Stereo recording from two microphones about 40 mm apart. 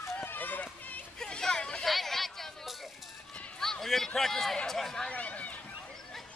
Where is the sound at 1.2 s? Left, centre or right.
Centre.